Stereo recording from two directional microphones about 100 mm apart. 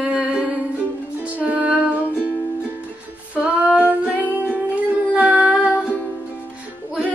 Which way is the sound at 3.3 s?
10° right (ahead or behind).